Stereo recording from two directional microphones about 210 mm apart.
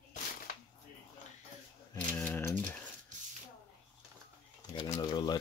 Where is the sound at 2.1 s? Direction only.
10° left (ahead or behind).